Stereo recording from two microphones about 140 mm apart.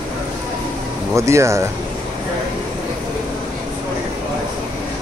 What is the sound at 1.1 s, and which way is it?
Speech, 20° right (ahead or behind).